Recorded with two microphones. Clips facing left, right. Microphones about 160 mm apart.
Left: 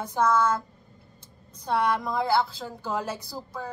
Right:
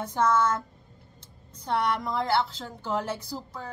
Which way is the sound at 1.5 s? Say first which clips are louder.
Left 2 dB; 10° left (ahead or behind).